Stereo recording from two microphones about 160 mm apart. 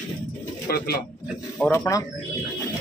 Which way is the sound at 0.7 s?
75° left (ahead or behind).